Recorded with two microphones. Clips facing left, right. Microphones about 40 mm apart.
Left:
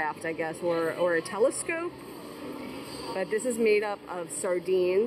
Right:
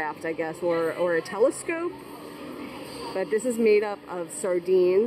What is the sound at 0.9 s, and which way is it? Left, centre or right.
Speech, centre.